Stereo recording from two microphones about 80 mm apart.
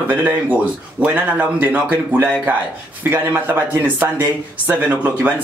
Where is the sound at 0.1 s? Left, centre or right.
Right.